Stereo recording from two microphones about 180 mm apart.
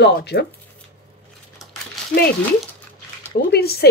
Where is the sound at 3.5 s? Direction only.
60° left (ahead or behind).